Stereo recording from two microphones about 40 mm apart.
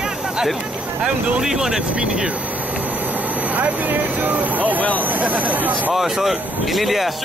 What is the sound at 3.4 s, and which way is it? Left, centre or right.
Speech, right.